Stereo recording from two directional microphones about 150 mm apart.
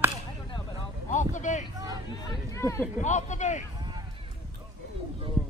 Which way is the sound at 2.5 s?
15° left (ahead or behind).